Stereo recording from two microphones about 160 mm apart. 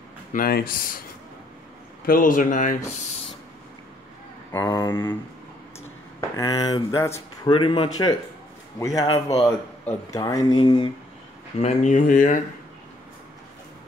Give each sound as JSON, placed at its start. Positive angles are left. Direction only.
{"t": 0.3, "sound": "speech", "side_deg": 70}
{"t": 2.0, "sound": "speech", "side_deg": 60}
{"t": 4.5, "sound": "speech", "side_deg": 15}
{"t": 6.3, "sound": "speech", "side_deg": 20}
{"t": 7.4, "sound": "speech", "side_deg": 30}
{"t": 11.6, "sound": "speech", "side_deg": 50}